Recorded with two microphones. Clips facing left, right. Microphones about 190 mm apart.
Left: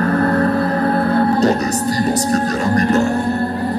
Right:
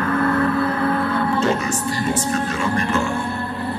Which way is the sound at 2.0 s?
40° left (ahead or behind).